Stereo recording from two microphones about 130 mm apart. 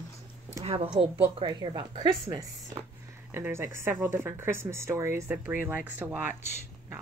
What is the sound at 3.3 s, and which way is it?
Speech, 20° right (ahead or behind).